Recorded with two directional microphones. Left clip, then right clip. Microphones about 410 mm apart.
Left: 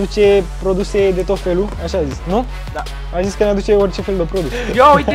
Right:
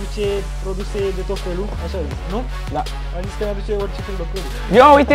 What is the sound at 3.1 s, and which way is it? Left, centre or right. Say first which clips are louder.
Speech: left 11 dB; left.